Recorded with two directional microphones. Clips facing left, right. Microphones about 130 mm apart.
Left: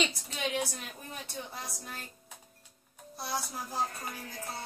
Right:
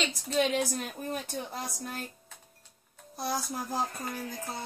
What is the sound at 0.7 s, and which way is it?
Speech, 45° right (ahead or behind).